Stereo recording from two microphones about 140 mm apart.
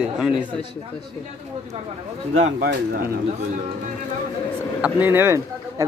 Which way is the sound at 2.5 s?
90° right.